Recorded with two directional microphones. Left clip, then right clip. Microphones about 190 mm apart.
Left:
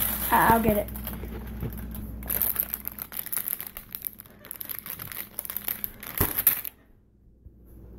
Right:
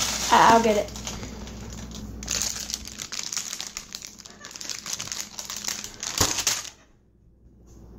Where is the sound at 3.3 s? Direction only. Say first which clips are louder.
Right 9 dB; 15° left (ahead or behind).